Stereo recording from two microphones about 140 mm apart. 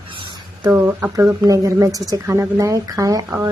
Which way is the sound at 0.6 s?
15° right (ahead or behind).